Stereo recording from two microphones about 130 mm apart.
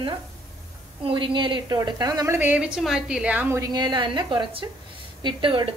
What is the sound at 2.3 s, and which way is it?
A woman's voice, 15° right (ahead or behind).